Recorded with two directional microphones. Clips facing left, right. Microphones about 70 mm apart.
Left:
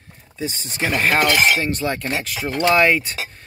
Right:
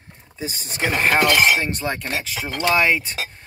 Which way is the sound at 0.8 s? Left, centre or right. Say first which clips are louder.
Even; centre.